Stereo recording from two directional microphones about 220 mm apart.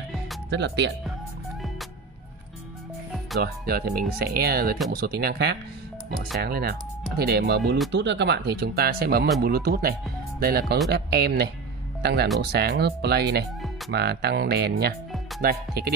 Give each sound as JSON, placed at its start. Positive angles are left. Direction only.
{"t": 0.5, "sound": "speech", "side_deg": -50}
{"t": 3.3, "sound": "speech", "side_deg": -45}